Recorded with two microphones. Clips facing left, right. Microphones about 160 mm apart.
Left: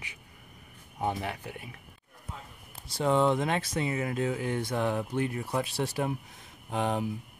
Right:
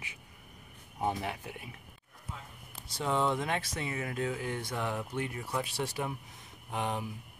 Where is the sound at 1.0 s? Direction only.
30° left (ahead or behind).